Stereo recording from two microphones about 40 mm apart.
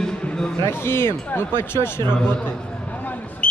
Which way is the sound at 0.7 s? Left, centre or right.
Left.